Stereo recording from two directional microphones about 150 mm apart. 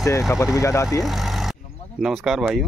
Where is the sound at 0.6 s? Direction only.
20° left (ahead or behind).